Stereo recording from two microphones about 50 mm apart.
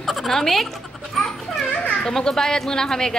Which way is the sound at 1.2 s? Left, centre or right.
Centre.